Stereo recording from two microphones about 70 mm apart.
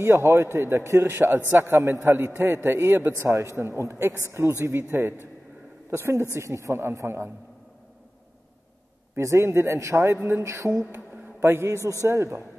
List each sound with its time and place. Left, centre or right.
0.0 s a man's voice: right
9.1 s a man's voice: right